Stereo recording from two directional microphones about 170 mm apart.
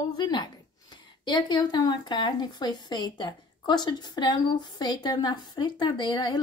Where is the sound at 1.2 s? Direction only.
25° left (ahead or behind).